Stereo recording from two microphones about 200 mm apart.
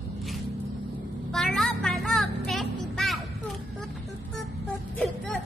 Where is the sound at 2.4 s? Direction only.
Centre (ahead or behind).